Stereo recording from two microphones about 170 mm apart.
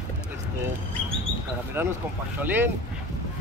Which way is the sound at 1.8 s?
15° right (ahead or behind).